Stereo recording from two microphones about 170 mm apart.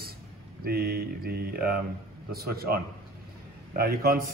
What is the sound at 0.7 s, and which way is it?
Speech, 65° right (ahead or behind).